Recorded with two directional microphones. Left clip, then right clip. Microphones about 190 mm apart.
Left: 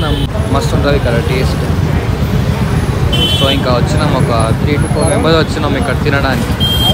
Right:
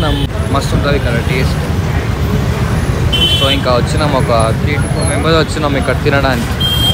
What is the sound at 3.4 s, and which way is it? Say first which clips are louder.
Speech: even; 15° left (ahead or behind).